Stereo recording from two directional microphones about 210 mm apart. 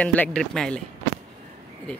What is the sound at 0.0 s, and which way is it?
Speech, 5° left (ahead or behind).